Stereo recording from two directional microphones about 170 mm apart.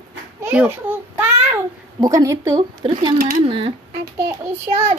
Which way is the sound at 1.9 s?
20° right (ahead or behind).